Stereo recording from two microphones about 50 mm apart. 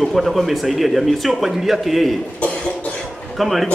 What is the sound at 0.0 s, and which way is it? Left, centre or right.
Speech, centre.